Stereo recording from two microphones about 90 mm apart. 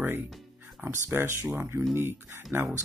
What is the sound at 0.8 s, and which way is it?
Speech, 30° right (ahead or behind).